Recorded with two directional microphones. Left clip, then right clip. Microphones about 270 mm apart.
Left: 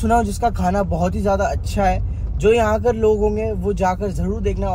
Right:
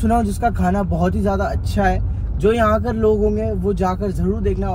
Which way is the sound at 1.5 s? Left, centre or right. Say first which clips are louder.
Even; centre.